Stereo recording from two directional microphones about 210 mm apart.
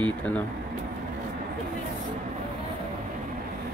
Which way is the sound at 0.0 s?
5° left (ahead or behind).